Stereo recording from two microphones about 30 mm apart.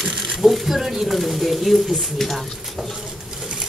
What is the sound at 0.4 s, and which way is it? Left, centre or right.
Speech, centre.